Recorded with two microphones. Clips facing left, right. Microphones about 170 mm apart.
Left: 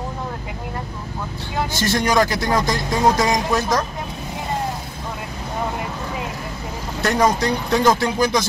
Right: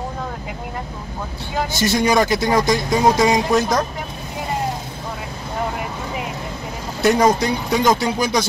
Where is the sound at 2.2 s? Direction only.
20° right (ahead or behind).